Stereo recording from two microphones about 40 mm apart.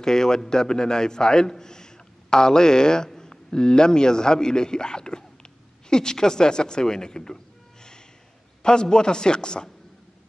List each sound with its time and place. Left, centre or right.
0.0 s a man's voice: centre
8.6 s a woman's voice: left